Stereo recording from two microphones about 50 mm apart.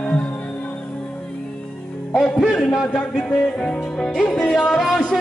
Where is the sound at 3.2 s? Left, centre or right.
Centre.